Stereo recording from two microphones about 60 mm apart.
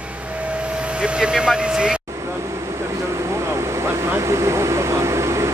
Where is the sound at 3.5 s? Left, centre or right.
Right.